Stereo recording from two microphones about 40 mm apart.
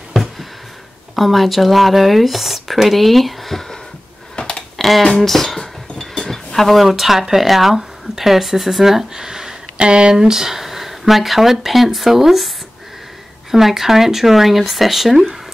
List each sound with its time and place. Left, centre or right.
0.1 s a sound: centre
1.1 s speech: centre
4.4 s tick: left
4.7 s a sound: centre
5.2 s speech: centre
13.5 s speech: centre